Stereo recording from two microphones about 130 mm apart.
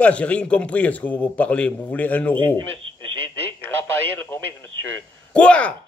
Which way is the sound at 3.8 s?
15° left (ahead or behind).